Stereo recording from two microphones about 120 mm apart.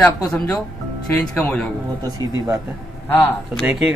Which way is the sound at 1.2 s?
5° left (ahead or behind).